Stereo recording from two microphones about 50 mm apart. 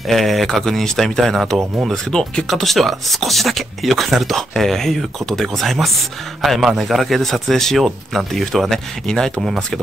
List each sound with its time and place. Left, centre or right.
0.1 s speech: centre
6.6 s speech: centre